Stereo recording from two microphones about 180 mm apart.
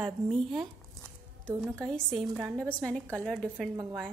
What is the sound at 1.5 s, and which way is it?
Speech, 10° right (ahead or behind).